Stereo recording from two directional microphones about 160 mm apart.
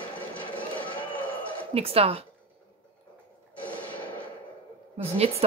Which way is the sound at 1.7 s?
35° right (ahead or behind).